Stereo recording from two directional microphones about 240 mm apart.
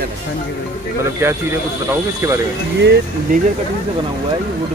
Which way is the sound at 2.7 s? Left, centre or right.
Right.